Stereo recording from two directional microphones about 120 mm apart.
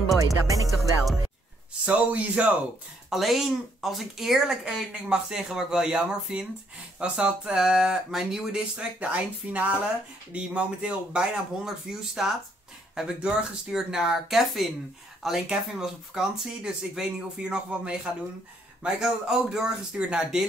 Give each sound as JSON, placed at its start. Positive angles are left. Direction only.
{"t": 0.3, "sound": "music", "side_deg": -30}
{"t": 1.9, "sound": "speech", "side_deg": -10}